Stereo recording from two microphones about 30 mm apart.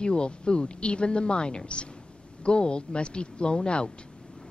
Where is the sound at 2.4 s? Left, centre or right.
Left.